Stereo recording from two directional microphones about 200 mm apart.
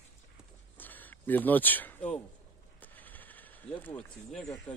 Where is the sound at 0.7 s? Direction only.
10° left (ahead or behind).